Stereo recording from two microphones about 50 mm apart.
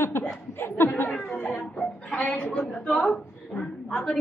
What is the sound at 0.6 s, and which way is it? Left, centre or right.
Speech, left.